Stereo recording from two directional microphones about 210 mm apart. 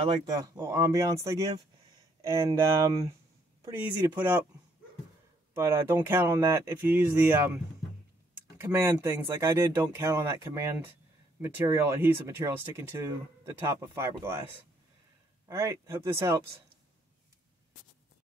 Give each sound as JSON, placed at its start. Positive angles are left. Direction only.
{"t": 0.0, "sound": "speech", "side_deg": -20}
{"t": 5.5, "sound": "speech", "side_deg": -10}
{"t": 15.4, "sound": "speech", "side_deg": -15}